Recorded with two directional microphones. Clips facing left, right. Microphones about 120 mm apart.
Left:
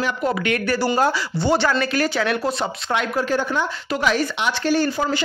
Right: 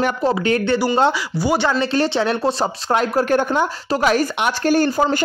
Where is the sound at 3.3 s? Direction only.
50° right (ahead or behind).